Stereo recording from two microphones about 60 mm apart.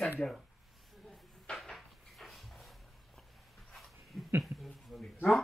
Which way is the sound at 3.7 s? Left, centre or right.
Centre.